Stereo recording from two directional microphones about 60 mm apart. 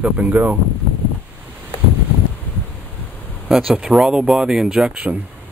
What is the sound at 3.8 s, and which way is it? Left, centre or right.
Speech, centre.